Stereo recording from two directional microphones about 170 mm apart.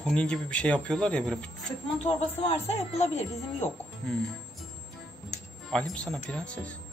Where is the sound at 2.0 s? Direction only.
35° left (ahead or behind).